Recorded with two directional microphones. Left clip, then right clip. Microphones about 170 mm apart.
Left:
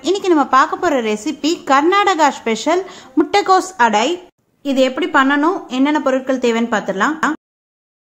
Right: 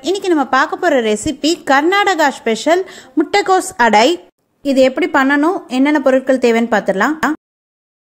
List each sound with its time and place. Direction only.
0.0 s speech: 15° right (ahead or behind)
3.7 s a woman's voice: 30° right (ahead or behind)